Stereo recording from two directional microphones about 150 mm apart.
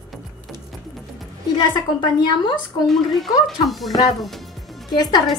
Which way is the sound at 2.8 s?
Centre (ahead or behind).